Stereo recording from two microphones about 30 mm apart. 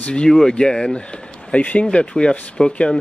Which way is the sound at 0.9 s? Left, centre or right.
Left.